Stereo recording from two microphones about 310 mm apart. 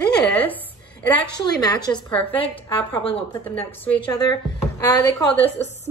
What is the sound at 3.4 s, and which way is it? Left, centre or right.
A woman's voice, centre.